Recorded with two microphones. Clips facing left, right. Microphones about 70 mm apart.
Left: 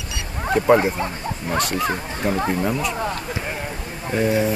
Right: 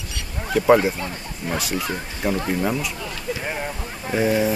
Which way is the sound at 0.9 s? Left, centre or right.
Left.